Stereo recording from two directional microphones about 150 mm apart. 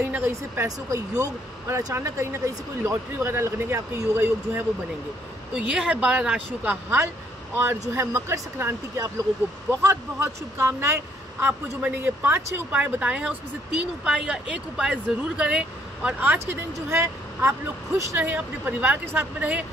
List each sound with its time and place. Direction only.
0.0 s speech: 15° right (ahead or behind)
5.5 s speech: 5° right (ahead or behind)